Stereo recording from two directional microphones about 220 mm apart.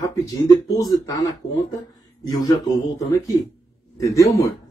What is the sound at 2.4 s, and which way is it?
Speech, 15° left (ahead or behind).